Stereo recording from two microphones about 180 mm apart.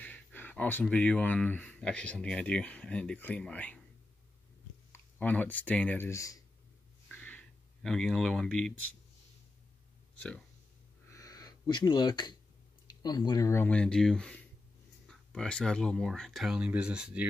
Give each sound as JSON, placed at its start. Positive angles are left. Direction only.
{"t": 0.0, "sound": "speech", "side_deg": 10}
{"t": 4.9, "sound": "speech", "side_deg": 10}
{"t": 7.1, "sound": "a sound", "side_deg": 10}
{"t": 10.1, "sound": "speech", "side_deg": 5}
{"t": 11.1, "sound": "a sound", "side_deg": 20}
{"t": 13.0, "sound": "speech", "side_deg": 25}